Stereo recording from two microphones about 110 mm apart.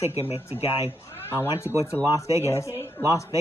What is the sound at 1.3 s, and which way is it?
Speech, 20° left (ahead or behind).